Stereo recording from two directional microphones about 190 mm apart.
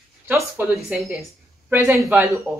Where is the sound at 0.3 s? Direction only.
10° right (ahead or behind).